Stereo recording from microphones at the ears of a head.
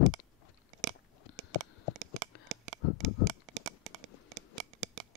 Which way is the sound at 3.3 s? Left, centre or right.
Right.